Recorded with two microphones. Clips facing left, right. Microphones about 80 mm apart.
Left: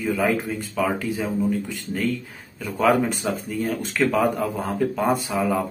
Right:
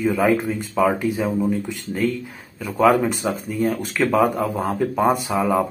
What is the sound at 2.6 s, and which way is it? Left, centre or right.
Speech, centre.